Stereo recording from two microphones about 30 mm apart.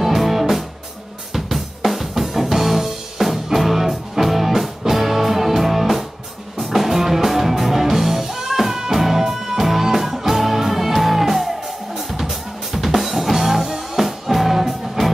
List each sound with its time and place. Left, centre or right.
0.0 s music: centre
1.3 s drum kit: centre
6.6 s music: centre